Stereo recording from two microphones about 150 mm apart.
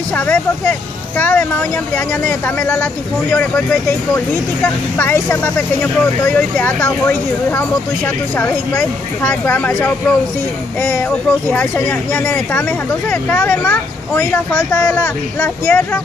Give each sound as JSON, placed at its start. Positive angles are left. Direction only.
{"t": 0.1, "sound": "speech", "side_deg": 10}
{"t": 4.9, "sound": "speech", "side_deg": 15}